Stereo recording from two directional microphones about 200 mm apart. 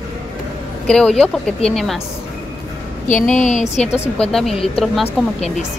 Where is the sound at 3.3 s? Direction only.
35° left (ahead or behind).